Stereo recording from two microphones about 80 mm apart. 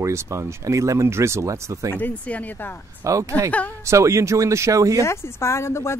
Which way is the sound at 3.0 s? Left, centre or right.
Right.